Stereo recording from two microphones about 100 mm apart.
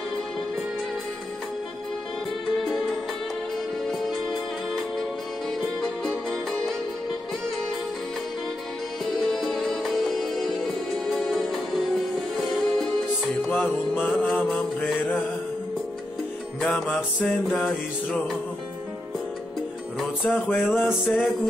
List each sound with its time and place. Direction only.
3.9 s music: centre (ahead or behind)
9.2 s music: centre (ahead or behind)
13.4 s music: 15° left (ahead or behind)
16.6 s music: 5° left (ahead or behind)
20.2 s music: 20° left (ahead or behind)